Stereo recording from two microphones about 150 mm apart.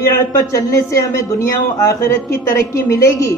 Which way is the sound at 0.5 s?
20° left (ahead or behind).